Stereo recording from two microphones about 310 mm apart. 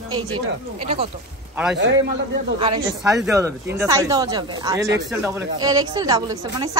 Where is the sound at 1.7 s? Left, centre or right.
Right.